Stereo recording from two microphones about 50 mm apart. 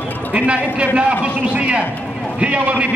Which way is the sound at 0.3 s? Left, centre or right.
Right.